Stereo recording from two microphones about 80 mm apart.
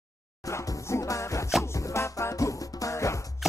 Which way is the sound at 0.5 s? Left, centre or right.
Left.